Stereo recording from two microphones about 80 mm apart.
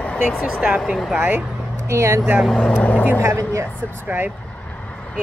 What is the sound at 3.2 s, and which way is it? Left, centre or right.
Speech, right.